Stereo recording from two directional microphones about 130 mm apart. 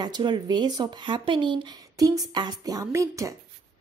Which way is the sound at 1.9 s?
30° right (ahead or behind).